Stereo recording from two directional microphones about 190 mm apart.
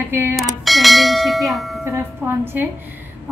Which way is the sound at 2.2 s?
15° right (ahead or behind).